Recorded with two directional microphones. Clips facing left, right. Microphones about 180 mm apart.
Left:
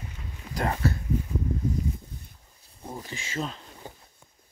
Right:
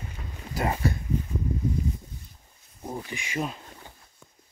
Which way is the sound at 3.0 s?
15° right (ahead or behind).